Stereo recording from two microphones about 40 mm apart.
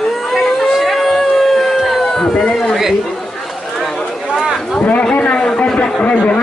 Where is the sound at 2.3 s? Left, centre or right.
Centre.